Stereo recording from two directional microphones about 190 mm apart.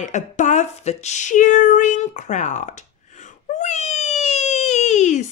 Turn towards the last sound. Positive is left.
turn(degrees=35)  # may be behind; listen again after turning